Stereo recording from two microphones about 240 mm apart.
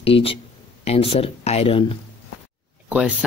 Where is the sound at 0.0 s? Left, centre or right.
Left.